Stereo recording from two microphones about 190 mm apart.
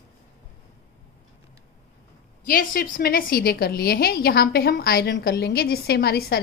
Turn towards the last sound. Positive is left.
turn(degrees=55)  # may be behind; listen again after turning